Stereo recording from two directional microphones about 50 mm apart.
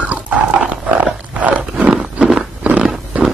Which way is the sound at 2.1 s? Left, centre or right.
Centre.